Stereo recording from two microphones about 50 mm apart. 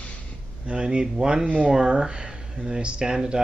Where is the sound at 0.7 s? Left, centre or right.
Centre.